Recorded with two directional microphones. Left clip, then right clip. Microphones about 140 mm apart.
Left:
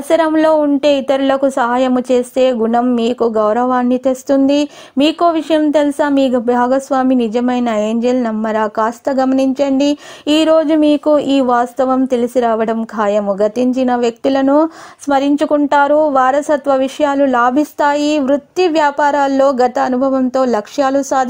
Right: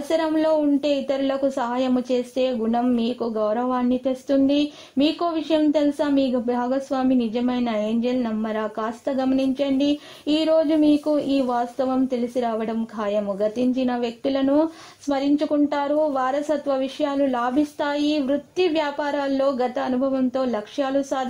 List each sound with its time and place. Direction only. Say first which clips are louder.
0.1 s speech: left 9 dB; 35° left (ahead or behind)